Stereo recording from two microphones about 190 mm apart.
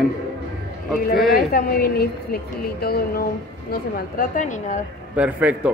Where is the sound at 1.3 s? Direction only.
50° left (ahead or behind).